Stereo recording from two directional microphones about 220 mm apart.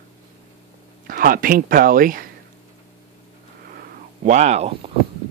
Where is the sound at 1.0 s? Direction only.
40° right (ahead or behind).